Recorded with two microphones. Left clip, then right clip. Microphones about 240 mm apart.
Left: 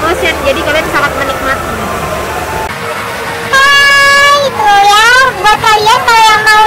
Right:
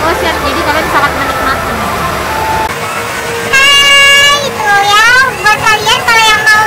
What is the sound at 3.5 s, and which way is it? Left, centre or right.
Music, left.